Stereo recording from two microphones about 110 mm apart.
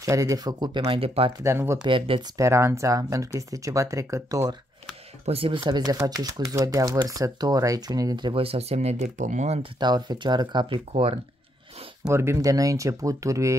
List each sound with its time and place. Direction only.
0.0 s speech: 30° right (ahead or behind)
0.8 s speech: 60° right (ahead or behind)
1.4 s speech: 25° right (ahead or behind)
1.8 s speech: 50° right (ahead or behind)
2.3 s speech: 25° right (ahead or behind)
5.2 s speech: 60° right (ahead or behind)
5.6 s speech: 40° right (ahead or behind)
8.3 s speech: 60° right (ahead or behind); by 9.7 s 80° right
9.8 s speech: 40° right (ahead or behind)
10.9 s speech: 55° right (ahead or behind)
12.1 s speech: 25° right (ahead or behind)